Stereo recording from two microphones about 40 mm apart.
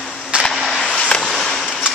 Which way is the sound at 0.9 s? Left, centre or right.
Left.